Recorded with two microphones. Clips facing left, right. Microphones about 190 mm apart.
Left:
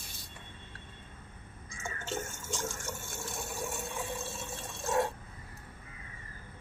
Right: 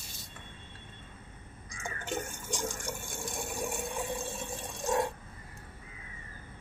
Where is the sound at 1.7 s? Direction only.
15° right (ahead or behind).